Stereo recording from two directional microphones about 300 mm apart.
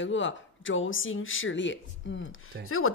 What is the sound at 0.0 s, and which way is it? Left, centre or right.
Speech, left.